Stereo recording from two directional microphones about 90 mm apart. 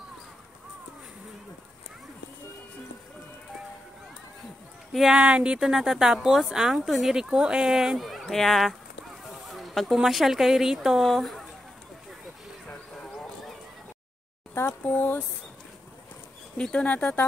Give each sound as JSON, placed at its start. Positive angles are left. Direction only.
{"t": 4.9, "sound": "a woman's voice", "side_deg": -5}
{"t": 12.6, "sound": "a sound", "side_deg": 5}
{"t": 14.5, "sound": "speech", "side_deg": 25}
{"t": 16.5, "sound": "speech", "side_deg": 10}